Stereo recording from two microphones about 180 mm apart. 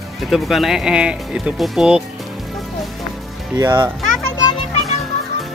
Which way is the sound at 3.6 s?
15° right (ahead or behind).